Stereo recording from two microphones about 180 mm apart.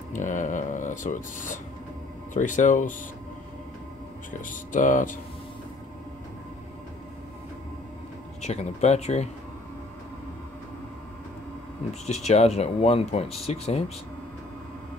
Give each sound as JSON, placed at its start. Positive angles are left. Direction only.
{"t": 0.1, "sound": "speech", "side_deg": 45}
{"t": 4.3, "sound": "speech", "side_deg": 45}
{"t": 8.4, "sound": "speech", "side_deg": 40}
{"t": 11.9, "sound": "speech", "side_deg": 35}